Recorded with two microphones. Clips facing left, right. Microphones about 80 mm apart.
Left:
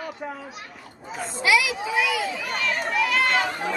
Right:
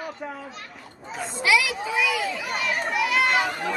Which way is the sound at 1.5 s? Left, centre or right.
Centre.